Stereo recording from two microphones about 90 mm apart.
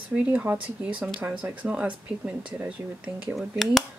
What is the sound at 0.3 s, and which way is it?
Speech, 15° right (ahead or behind).